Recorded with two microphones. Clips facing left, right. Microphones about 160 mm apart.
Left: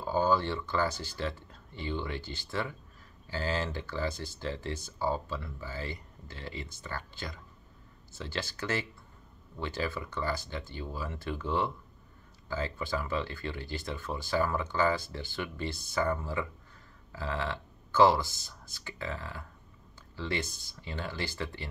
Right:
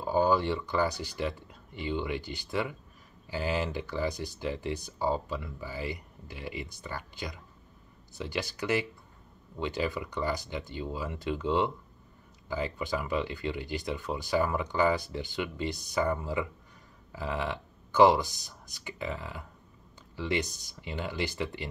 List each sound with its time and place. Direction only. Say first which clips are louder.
0.0 s speech: right 2 dB; 15° right (ahead or behind)